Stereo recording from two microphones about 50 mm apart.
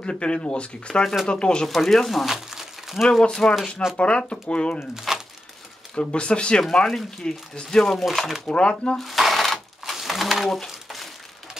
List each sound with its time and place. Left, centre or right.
0.0 s speech: centre
1.7 s speech: centre
3.2 s speech: centre
3.9 s speech: left
4.9 s crumpling: centre
5.9 s speech: left
7.9 s speech: centre
8.5 s speech: left
8.9 s a sound: centre
10.7 s crumpling: centre